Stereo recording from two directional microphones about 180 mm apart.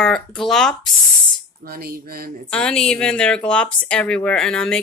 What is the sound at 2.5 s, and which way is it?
Speech, 5° left (ahead or behind).